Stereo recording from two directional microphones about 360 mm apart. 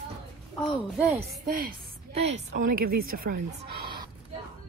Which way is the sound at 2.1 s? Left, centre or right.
Centre.